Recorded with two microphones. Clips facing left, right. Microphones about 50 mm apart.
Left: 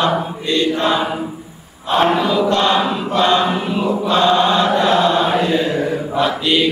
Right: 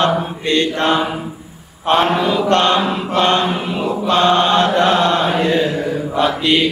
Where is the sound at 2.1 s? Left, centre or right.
Right.